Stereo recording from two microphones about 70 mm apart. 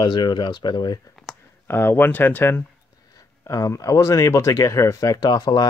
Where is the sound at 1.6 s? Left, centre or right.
Left.